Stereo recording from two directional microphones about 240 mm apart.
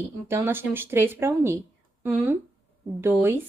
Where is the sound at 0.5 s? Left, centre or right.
Centre.